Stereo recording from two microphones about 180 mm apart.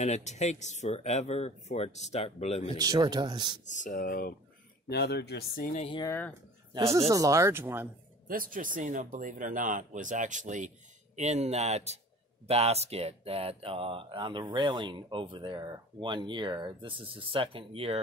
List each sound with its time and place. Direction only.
0.0 s speech: 40° left (ahead or behind)
2.8 s speech: 20° right (ahead or behind)
3.6 s speech: 45° left (ahead or behind)
4.8 s speech: 65° left (ahead or behind); by 5.9 s 50° left (ahead or behind)
6.0 s speech: 10° left (ahead or behind)
6.7 s speech: 15° right (ahead or behind)
8.3 s speech: 50° right (ahead or behind); by 18.0 s 35° right (ahead or behind)